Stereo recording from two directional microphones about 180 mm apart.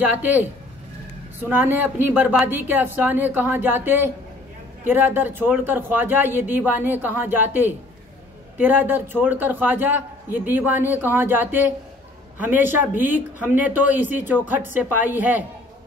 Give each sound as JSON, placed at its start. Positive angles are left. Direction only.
{"t": 0.1, "sound": "a man's voice", "side_deg": -10}
{"t": 1.5, "sound": "a man's voice", "side_deg": -10}